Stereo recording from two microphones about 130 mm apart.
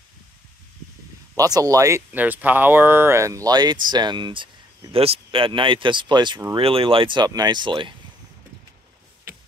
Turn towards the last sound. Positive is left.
turn(degrees=-40)  # may be behind; listen again after turning